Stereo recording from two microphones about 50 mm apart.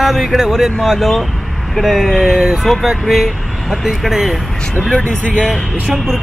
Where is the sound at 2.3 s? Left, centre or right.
Centre.